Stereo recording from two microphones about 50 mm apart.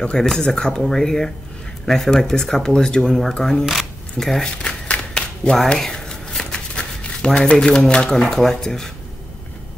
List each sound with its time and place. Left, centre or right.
0.2 s speech: centre
3.3 s speech: centre
3.6 s speech: centre
4.6 s a sound: left
5.7 s shuffling cards: centre
7.5 s speech: centre